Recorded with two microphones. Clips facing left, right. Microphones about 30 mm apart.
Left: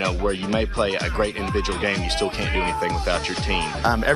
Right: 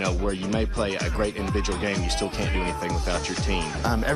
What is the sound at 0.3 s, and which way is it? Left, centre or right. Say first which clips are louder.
Speech: left 3 dB; left.